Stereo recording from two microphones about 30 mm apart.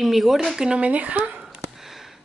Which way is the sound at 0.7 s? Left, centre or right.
Right.